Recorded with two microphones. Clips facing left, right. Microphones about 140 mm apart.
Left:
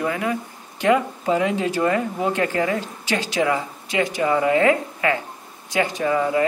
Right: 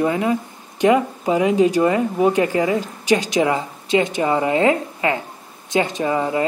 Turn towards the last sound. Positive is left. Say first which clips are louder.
# even
turn(degrees=-25)  # may be behind; listen again after turning